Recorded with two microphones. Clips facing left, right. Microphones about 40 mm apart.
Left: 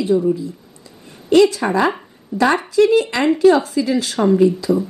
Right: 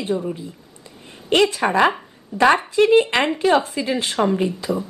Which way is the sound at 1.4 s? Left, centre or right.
Right.